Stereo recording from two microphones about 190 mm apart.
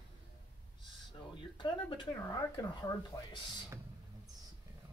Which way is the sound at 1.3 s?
25° left (ahead or behind).